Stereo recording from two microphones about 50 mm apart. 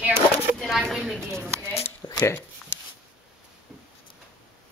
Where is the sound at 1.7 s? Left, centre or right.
Left.